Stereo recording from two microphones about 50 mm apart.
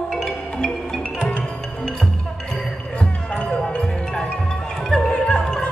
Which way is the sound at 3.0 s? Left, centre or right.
Centre.